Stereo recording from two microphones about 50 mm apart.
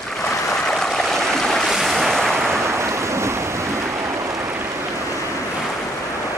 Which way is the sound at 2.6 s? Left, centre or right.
Right.